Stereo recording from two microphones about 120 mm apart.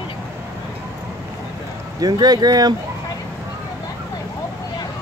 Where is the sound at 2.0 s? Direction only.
35° right (ahead or behind).